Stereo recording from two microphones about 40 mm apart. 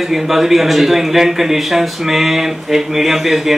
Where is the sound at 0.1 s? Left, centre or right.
Centre.